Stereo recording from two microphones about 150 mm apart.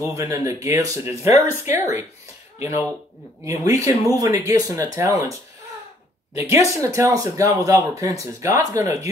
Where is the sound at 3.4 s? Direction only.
20° right (ahead or behind).